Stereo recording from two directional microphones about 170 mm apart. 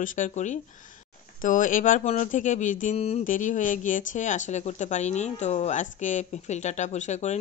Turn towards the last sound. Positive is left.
turn(degrees=45)  # may be behind; listen again after turning